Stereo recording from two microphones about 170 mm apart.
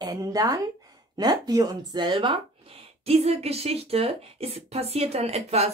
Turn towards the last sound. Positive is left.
turn(degrees=-40)  # may be behind; listen again after turning